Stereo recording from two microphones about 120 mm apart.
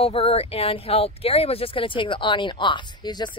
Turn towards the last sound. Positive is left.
turn(degrees=40)  # may be behind; listen again after turning